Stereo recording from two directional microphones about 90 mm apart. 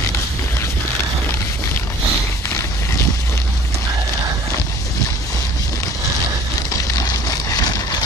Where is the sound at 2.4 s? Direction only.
35° left (ahead or behind).